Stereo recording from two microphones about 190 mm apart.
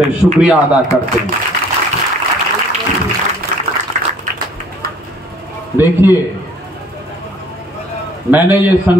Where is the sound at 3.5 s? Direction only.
45° right (ahead or behind).